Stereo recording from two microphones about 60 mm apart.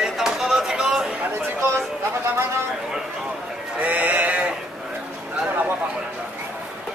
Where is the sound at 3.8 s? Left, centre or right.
Right.